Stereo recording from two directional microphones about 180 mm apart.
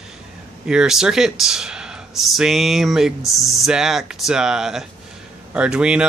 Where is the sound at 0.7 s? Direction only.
5° right (ahead or behind).